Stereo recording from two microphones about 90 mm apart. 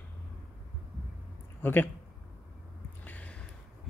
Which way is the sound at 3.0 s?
20° left (ahead or behind).